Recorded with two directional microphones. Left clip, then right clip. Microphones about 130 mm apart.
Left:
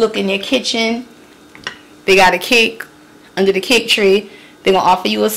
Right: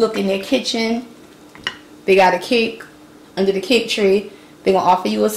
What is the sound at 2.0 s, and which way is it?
A woman's voice, 30° left (ahead or behind).